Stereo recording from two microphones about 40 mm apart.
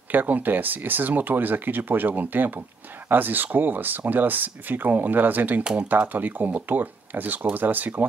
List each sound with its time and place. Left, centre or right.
0.1 s speech: right
5.6 s speech: right
5.9 s speech: right